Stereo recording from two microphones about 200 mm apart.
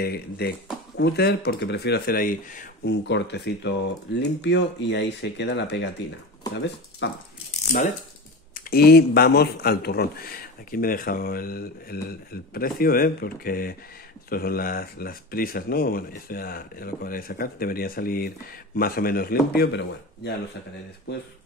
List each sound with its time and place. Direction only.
0.0 s speech: 50° left (ahead or behind)
3.1 s speech: 60° left (ahead or behind)
8.5 s speech: 50° left (ahead or behind)